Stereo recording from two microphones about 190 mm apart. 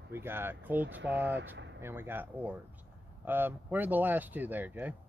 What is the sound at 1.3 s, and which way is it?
Speech, 70° right (ahead or behind).